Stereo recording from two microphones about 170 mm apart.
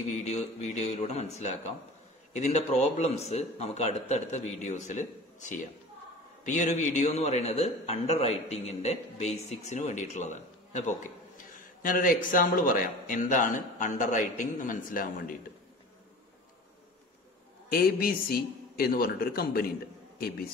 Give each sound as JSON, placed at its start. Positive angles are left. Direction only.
{"t": 0.1, "sound": "a man's voice", "side_deg": 40}
{"t": 17.6, "sound": "a man's voice", "side_deg": 60}